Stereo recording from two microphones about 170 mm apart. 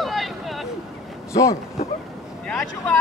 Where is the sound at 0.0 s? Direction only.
Centre (ahead or behind).